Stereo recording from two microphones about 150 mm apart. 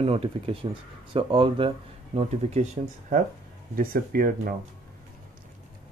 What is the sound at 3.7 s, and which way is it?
Speech, 75° right (ahead or behind).